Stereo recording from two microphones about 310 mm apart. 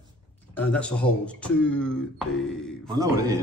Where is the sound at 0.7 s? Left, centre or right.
Centre.